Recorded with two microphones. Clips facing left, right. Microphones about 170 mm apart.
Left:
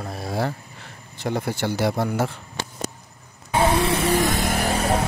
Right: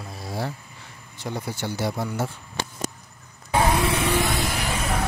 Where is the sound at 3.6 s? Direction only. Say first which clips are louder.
Left 5 dB; 30° left (ahead or behind).